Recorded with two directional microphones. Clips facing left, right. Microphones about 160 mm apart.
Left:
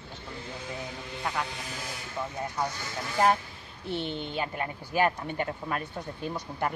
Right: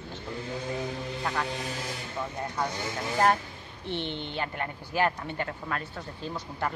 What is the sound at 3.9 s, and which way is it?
Speech, 40° left (ahead or behind).